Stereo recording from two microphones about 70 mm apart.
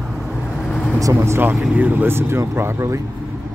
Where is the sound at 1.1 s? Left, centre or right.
Right.